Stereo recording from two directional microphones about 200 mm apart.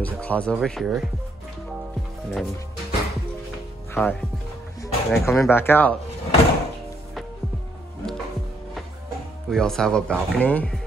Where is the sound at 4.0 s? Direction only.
Centre (ahead or behind).